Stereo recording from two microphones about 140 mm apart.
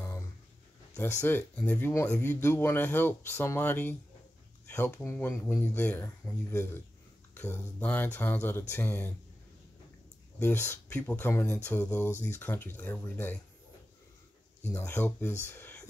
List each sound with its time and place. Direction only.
1.2 s speech: 10° left (ahead or behind)
10.4 s speech: 15° left (ahead or behind)
14.6 s speech: 20° left (ahead or behind)